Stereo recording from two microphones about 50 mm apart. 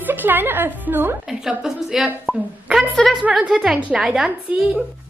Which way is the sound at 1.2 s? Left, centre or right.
Centre.